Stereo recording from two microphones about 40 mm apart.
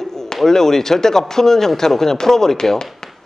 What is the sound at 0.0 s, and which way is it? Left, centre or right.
A man's voice, centre.